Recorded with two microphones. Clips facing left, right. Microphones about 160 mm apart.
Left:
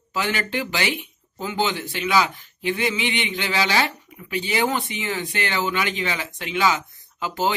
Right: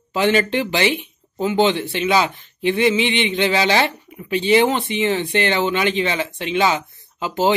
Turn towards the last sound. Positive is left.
turn(degrees=-20)  # may be behind; listen again after turning